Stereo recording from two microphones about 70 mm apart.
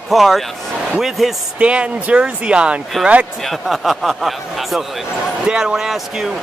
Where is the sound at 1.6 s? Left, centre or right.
Centre.